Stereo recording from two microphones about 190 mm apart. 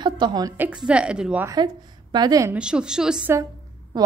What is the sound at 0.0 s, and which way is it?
A woman's voice, 25° right (ahead or behind).